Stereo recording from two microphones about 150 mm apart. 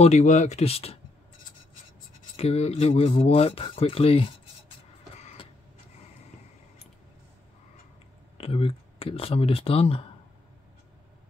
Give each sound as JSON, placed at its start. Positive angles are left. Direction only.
{"t": 0.0, "sound": "speech", "side_deg": 50}
{"t": 2.3, "sound": "speech", "side_deg": 45}
{"t": 8.4, "sound": "speech", "side_deg": 40}